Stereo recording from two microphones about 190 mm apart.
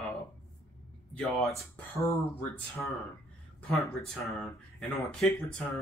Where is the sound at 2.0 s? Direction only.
15° left (ahead or behind).